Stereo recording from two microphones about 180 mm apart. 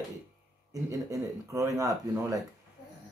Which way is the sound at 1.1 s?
20° right (ahead or behind).